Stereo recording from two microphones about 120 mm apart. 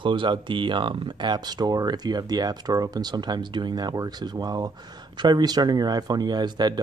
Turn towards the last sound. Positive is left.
turn(degrees=-35)  # may be behind; listen again after turning